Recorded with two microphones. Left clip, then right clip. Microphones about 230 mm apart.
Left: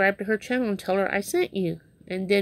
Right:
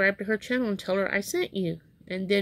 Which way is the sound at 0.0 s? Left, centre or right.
Centre.